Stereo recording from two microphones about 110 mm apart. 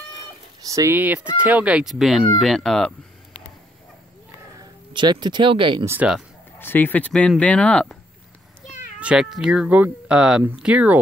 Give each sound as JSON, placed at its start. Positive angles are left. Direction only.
{"t": 0.6, "sound": "speech", "side_deg": -30}
{"t": 0.9, "sound": "speech", "side_deg": -15}
{"t": 4.9, "sound": "speech", "side_deg": -40}
{"t": 6.6, "sound": "speech", "side_deg": 15}
{"t": 9.0, "sound": "speech", "side_deg": -5}